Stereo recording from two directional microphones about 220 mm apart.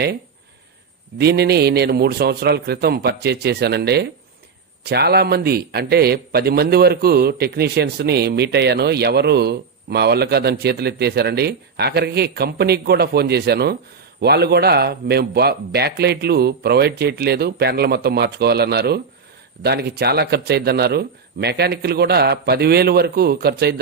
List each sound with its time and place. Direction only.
1.1 s a man's voice: 45° right (ahead or behind)